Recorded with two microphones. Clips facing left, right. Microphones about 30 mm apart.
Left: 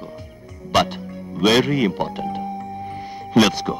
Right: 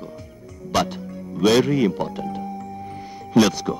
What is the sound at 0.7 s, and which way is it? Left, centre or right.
Music, left.